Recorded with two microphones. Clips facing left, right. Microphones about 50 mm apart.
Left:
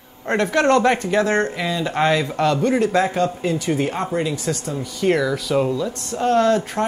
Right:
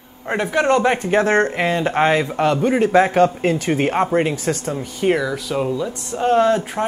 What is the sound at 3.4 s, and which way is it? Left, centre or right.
Speech, right.